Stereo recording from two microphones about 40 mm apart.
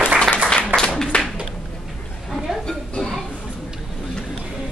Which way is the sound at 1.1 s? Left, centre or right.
Left.